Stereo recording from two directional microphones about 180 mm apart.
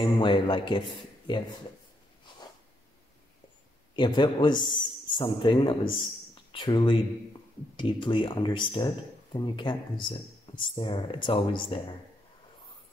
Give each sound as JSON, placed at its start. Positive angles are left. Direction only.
{"t": 0.0, "sound": "speech", "side_deg": 25}
{"t": 3.9, "sound": "speech", "side_deg": 25}